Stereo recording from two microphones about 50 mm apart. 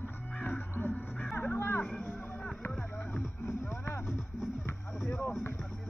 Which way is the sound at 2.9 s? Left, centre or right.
Left.